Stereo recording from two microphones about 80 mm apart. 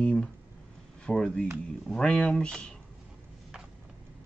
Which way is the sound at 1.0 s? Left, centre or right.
Centre.